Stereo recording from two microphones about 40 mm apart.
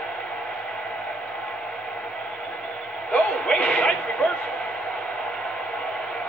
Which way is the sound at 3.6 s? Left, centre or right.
Left.